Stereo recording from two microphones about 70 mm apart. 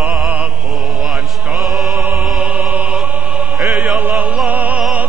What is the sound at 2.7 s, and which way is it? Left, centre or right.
Music, centre.